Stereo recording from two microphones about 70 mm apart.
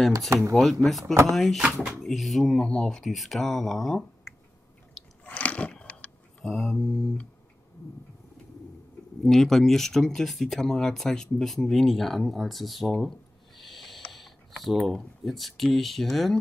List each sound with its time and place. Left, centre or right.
0.3 s speech: right
0.8 s speech: centre
5.2 s a sound: left
6.4 s speech: centre
9.2 s speech: centre
13.6 s a sound: centre
14.1 s speech: centre